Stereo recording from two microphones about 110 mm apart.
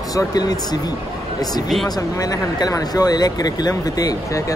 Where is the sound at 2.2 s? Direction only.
35° left (ahead or behind).